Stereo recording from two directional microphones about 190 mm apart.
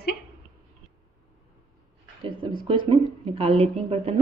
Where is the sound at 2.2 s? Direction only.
25° right (ahead or behind).